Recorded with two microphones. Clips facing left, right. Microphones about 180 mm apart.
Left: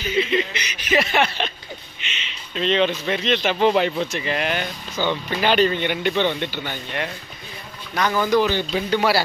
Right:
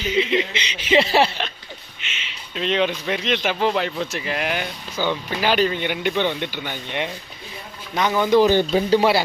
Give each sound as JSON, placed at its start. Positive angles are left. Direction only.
{"t": 0.2, "sound": "speech", "side_deg": -90}
{"t": 0.5, "sound": "speech", "side_deg": -25}
{"t": 2.1, "sound": "speech", "side_deg": -10}
{"t": 8.5, "sound": "speech", "side_deg": -45}
{"t": 8.9, "sound": "speech", "side_deg": -25}